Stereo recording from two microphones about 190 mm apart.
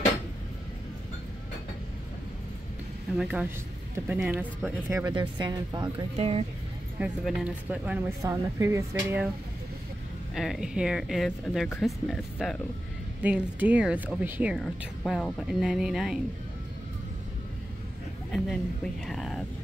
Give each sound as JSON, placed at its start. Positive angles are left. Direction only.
{"t": 3.2, "sound": "speech", "side_deg": -5}
{"t": 7.0, "sound": "speech", "side_deg": -5}
{"t": 10.3, "sound": "speech", "side_deg": 0}
{"t": 19.0, "sound": "speech", "side_deg": 0}